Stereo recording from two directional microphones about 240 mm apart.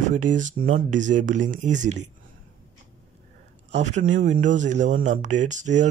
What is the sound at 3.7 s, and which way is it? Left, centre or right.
Speech, right.